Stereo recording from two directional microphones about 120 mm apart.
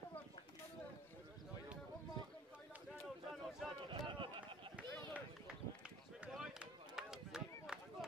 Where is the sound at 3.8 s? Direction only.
45° right (ahead or behind).